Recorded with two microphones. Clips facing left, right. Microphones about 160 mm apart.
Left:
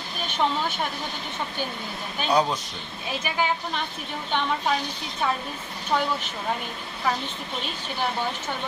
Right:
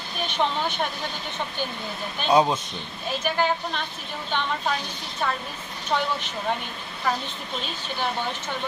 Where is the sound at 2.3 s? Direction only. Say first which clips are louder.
Right 3 dB; 25° right (ahead or behind).